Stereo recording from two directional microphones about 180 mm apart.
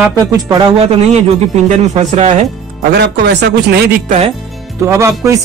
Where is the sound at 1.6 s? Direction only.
40° right (ahead or behind).